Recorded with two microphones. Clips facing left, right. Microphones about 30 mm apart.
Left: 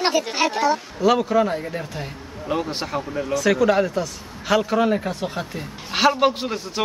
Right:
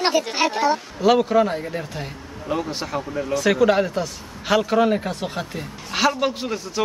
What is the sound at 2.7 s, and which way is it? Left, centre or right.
Speech, centre.